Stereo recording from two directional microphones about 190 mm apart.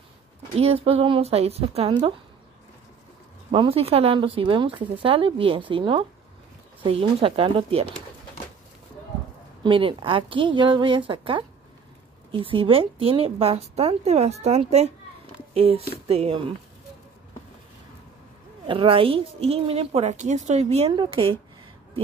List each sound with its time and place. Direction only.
0.6 s a woman's voice: 30° right (ahead or behind)
3.5 s a woman's voice: 30° right (ahead or behind)
9.6 s a woman's voice: 25° right (ahead or behind)
18.7 s a woman's voice: 30° right (ahead or behind)